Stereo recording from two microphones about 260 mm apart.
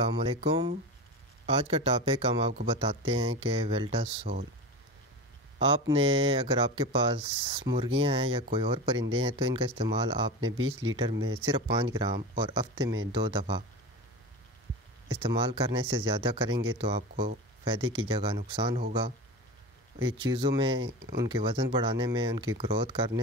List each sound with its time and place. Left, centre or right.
0.0 s speech: right
5.6 s speech: right
10.6 s speech: right
11.0 s speech: centre
15.0 s speech: centre
17.9 s speech: centre
20.2 s speech: centre